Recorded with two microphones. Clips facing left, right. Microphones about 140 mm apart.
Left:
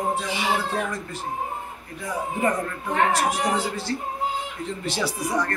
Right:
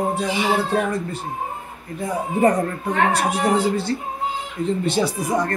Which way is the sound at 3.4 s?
25° right (ahead or behind).